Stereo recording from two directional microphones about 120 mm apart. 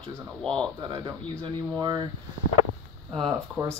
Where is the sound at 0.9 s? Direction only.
40° right (ahead or behind).